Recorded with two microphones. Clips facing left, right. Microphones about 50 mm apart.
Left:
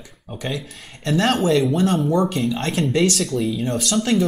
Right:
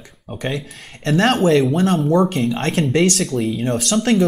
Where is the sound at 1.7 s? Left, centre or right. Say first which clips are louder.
Right 2 dB; right.